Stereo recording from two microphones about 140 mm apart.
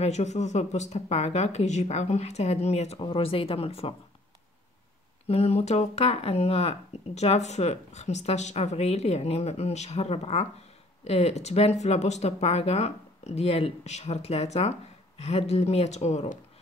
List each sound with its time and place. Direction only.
0.0 s speech: 55° left (ahead or behind)
5.2 s speech: 50° left (ahead or behind)